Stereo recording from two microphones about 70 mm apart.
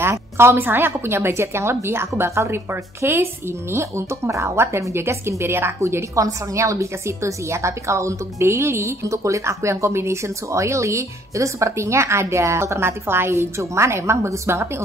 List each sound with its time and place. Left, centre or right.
0.0 s a woman's voice: right